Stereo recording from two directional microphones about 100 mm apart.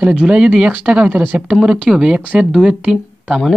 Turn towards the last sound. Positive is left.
turn(degrees=-10)  # may be behind; listen again after turning